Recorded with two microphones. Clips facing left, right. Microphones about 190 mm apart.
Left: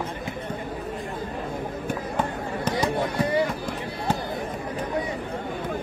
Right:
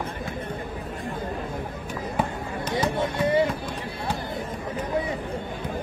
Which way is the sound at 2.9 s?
25° right (ahead or behind).